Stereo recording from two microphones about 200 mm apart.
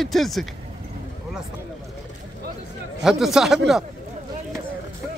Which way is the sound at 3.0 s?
Centre (ahead or behind).